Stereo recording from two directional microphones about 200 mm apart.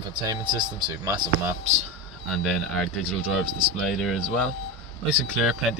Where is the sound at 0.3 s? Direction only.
20° right (ahead or behind).